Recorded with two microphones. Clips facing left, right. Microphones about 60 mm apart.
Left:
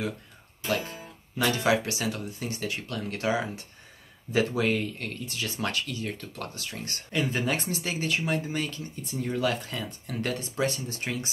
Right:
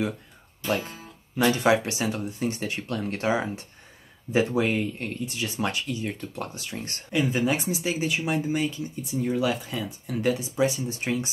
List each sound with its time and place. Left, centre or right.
1.4 s speech: right
7.1 s speech: centre